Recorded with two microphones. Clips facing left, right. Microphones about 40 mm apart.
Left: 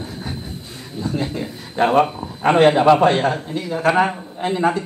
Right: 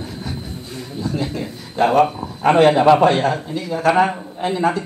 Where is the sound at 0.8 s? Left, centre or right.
Centre.